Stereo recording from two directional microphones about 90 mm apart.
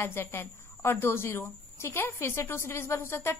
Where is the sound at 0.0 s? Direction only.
30° left (ahead or behind).